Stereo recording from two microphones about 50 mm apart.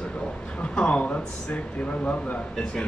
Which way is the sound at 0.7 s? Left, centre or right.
Left.